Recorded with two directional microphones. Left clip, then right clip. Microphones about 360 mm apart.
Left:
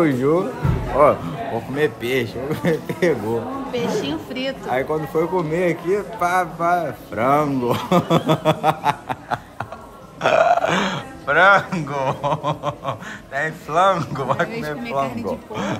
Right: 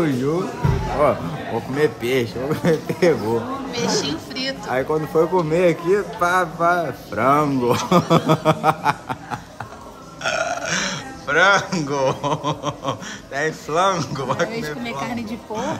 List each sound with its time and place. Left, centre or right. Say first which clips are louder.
0.0 s speech: left 3 dB; centre
10.2 s speech: left 7 dB; centre
15.5 s speech: right 5 dB; left